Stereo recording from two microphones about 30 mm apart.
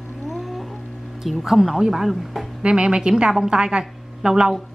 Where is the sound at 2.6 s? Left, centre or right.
Right.